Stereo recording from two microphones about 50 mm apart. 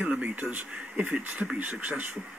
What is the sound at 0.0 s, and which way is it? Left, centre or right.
Speech, right.